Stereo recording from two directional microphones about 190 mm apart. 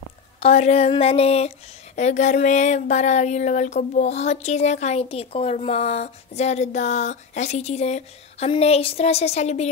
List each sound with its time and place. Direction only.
0.4 s speech: 35° left (ahead or behind)